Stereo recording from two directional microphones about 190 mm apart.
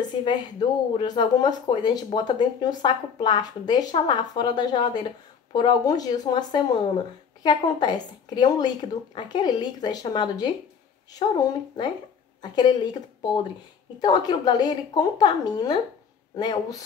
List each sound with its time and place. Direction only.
0.0 s a woman's voice: 25° left (ahead or behind)